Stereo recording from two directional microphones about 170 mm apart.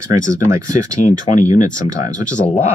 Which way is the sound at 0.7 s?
45° left (ahead or behind).